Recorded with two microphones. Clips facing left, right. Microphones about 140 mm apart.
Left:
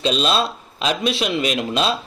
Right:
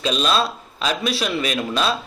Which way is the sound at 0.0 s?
30° left (ahead or behind).